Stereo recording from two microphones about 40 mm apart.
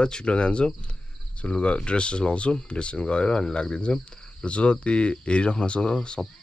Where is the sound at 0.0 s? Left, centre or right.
Left.